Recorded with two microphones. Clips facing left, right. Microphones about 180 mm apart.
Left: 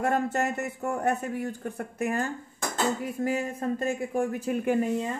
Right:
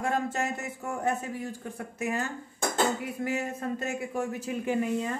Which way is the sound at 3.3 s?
45° left (ahead or behind).